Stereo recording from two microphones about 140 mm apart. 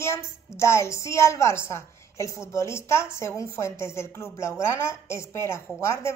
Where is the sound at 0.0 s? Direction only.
20° left (ahead or behind).